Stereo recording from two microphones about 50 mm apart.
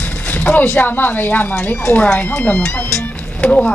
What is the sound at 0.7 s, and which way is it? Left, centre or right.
Speech, left.